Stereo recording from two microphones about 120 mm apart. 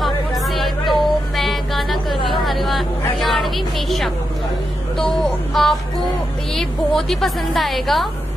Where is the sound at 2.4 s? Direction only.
Centre (ahead or behind).